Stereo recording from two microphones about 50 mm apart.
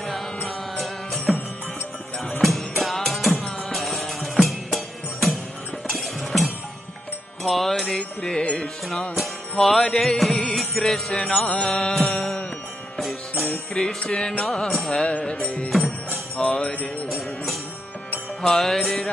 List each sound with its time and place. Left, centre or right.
0.5 s music: centre
2.4 s music: centre
7.4 s music: centre
8.0 s music: centre
9.1 s music: centre
14.0 s music: centre
14.4 s music: centre
15.0 s music: left
16.3 s music: centre
18.4 s music: centre